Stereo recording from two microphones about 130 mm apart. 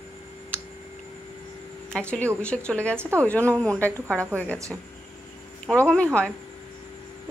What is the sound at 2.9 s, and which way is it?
Speech, 20° right (ahead or behind).